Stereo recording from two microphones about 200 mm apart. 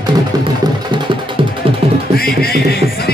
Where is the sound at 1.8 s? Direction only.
30° right (ahead or behind).